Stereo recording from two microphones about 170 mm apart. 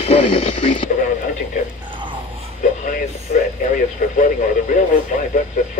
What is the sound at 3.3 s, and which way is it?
Radio, 50° left (ahead or behind).